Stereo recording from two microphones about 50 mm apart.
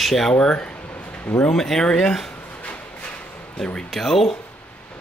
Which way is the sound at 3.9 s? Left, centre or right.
Centre.